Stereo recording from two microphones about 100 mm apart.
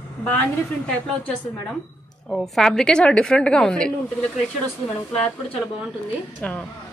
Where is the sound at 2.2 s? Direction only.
5° left (ahead or behind).